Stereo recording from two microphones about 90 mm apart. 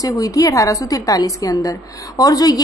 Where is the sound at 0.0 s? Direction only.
40° left (ahead or behind).